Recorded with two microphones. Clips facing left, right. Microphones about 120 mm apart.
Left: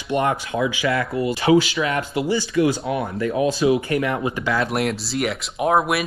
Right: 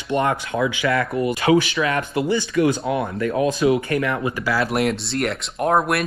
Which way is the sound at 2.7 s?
25° right (ahead or behind).